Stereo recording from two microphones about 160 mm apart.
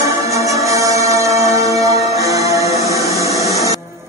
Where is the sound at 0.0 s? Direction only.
20° right (ahead or behind).